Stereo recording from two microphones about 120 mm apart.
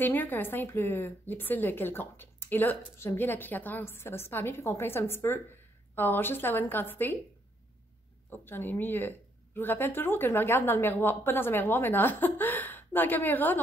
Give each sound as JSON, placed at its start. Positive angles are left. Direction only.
{"t": 0.0, "sound": "a woman's voice", "side_deg": 15}
{"t": 8.3, "sound": "a woman's voice", "side_deg": 20}